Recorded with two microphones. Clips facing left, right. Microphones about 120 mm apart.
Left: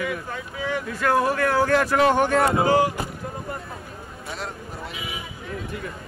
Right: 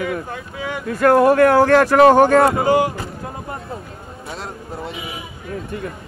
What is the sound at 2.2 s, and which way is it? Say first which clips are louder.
Speech: right 8 dB; 40° right (ahead or behind).